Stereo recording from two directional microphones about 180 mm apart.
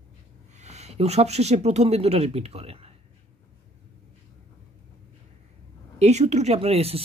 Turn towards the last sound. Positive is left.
turn(degrees=-35)  # may be behind; listen again after turning